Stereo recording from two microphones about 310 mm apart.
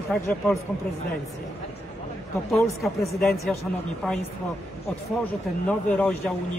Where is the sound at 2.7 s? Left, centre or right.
Centre.